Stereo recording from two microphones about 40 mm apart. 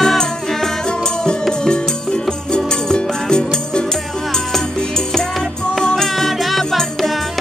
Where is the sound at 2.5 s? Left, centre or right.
Centre.